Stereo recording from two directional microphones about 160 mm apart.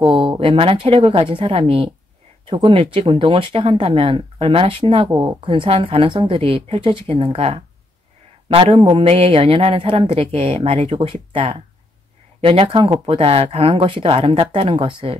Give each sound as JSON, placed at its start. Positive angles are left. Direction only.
{"t": 0.0, "sound": "speech", "side_deg": -30}